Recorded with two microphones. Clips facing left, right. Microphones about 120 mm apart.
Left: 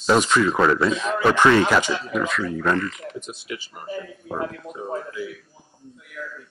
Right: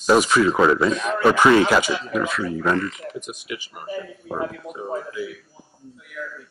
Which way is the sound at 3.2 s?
15° right (ahead or behind).